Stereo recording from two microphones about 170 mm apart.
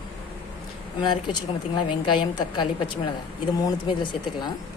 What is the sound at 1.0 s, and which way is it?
A woman's voice, 25° left (ahead or behind).